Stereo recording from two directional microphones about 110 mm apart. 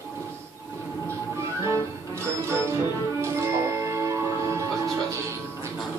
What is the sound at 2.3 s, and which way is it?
Music, 25° right (ahead or behind).